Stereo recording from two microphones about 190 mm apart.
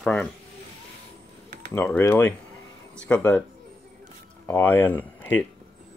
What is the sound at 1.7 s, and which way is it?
Speech, 10° left (ahead or behind).